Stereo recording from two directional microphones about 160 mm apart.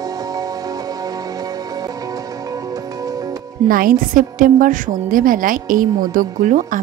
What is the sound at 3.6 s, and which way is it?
A woman's voice, 60° right (ahead or behind).